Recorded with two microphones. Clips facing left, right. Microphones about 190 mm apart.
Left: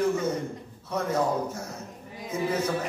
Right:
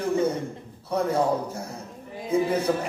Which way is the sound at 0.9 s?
30° right (ahead or behind).